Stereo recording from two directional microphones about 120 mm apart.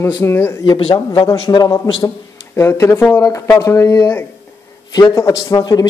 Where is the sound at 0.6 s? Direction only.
50° left (ahead or behind).